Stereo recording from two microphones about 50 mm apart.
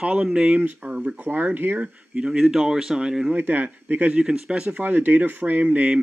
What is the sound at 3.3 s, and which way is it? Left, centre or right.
Speech, right.